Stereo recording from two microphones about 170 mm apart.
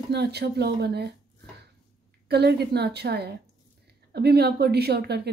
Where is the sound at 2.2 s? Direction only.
75° right (ahead or behind).